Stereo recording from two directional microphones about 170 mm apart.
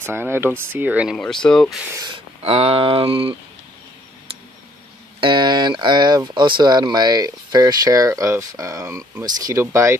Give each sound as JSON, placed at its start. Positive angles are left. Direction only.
{"t": 0.0, "sound": "speech", "side_deg": -15}
{"t": 1.1, "sound": "speech", "side_deg": 5}
{"t": 2.0, "sound": "speech", "side_deg": -30}
{"t": 5.2, "sound": "speech", "side_deg": -25}